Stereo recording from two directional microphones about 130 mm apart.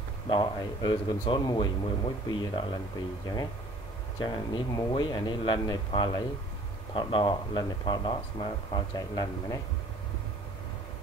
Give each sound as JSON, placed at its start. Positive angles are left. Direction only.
{"t": 0.3, "sound": "speech", "side_deg": 35}
{"t": 4.2, "sound": "speech", "side_deg": 40}
{"t": 8.9, "sound": "speech", "side_deg": 30}